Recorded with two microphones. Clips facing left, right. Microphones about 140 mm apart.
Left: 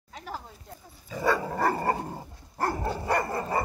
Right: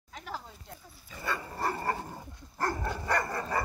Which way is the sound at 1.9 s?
30° left (ahead or behind).